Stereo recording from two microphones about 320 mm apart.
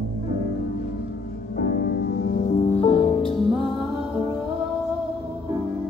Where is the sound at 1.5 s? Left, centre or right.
Left.